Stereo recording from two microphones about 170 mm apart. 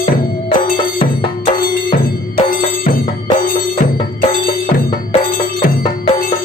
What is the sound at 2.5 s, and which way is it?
Music, 55° left (ahead or behind).